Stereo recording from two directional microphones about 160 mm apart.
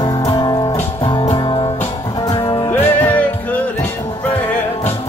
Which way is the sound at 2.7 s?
10° left (ahead or behind).